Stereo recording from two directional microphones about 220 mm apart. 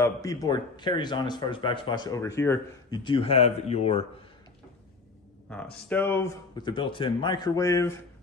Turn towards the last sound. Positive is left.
turn(degrees=15)  # may be behind; listen again after turning